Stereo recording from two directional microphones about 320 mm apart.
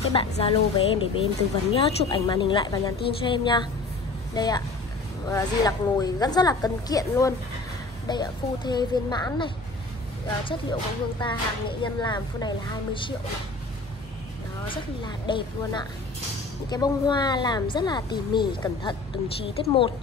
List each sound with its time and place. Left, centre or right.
0.1 s speech: centre
14.7 s speech: centre